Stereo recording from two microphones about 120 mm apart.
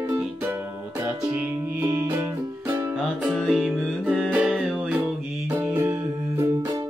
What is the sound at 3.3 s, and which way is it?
Music, centre (ahead or behind).